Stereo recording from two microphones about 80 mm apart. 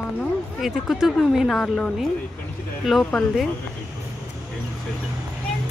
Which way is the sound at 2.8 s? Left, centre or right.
Centre.